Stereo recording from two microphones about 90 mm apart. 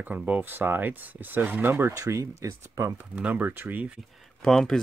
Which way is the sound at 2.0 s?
40° right (ahead or behind).